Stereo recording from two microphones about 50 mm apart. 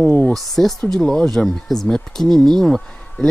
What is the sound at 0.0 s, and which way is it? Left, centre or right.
Speech, left.